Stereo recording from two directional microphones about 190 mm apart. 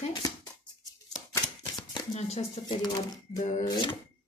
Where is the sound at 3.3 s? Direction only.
40° left (ahead or behind).